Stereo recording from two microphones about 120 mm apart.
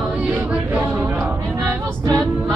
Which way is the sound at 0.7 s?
20° right (ahead or behind).